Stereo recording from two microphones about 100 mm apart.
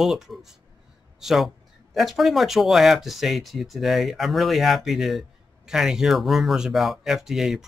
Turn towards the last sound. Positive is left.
turn(degrees=-5)  # may be behind; listen again after turning